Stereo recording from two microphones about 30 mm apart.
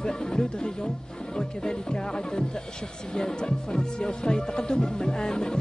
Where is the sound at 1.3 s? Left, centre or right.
Left.